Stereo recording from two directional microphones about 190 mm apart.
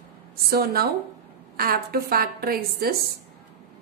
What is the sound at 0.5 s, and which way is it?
A woman's voice, 55° right (ahead or behind).